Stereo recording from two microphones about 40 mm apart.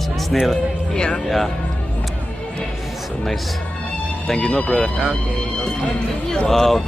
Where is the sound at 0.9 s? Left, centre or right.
Left.